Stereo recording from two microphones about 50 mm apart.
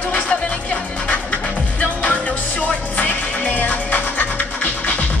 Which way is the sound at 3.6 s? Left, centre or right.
Left.